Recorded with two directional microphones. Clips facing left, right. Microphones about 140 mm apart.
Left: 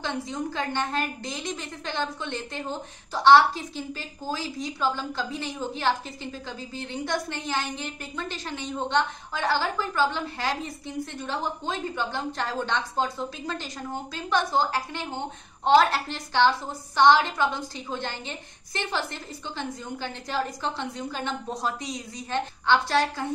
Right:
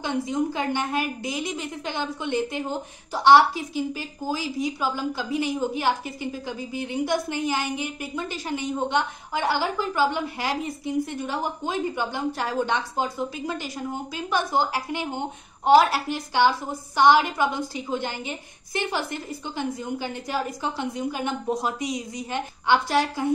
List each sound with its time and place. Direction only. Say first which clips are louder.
0.0 s a woman's voice: right 5 dB; 15° right (ahead or behind)